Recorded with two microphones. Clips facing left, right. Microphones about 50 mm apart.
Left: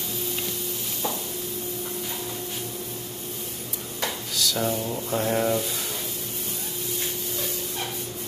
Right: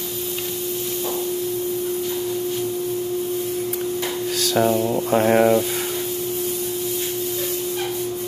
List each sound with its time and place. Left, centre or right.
4.4 s a sound: right
4.6 s speech: right
5.1 s speech: right